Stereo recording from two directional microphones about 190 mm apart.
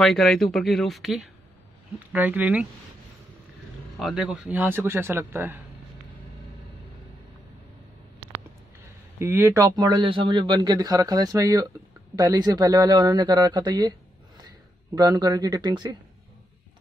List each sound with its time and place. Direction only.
0.0 s speech: centre (ahead or behind)
4.0 s speech: 5° right (ahead or behind)
9.2 s a man's voice: 15° right (ahead or behind)